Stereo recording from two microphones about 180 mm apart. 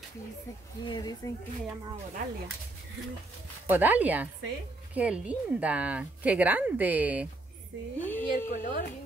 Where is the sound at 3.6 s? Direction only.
10° right (ahead or behind).